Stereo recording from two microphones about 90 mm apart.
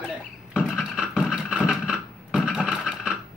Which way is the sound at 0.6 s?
5° right (ahead or behind).